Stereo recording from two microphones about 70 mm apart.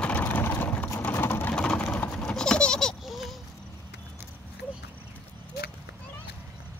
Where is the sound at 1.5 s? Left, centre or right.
Centre.